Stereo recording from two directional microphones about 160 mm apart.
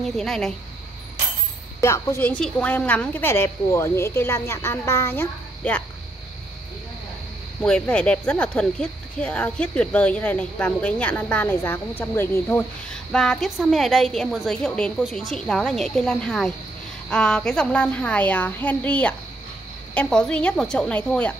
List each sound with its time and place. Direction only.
0.0 s a woman's voice: 5° left (ahead or behind)
1.8 s speech: 15° left (ahead or behind)
7.6 s speech: 5° left (ahead or behind)
12.9 s a woman's voice: 5° left (ahead or behind)